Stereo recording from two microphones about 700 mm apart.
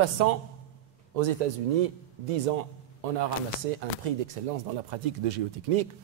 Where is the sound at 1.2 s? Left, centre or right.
Right.